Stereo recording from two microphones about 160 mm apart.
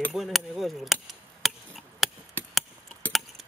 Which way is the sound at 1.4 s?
Centre (ahead or behind).